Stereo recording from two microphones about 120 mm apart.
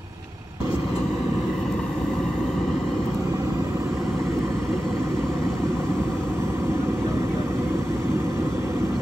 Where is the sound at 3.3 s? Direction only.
25° right (ahead or behind).